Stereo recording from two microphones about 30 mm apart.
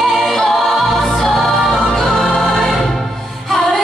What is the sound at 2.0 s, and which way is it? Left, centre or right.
Choir, centre.